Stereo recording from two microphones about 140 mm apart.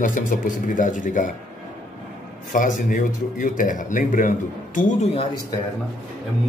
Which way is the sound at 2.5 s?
70° left (ahead or behind).